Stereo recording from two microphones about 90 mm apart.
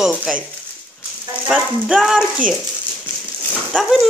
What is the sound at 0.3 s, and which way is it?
Speech, centre (ahead or behind).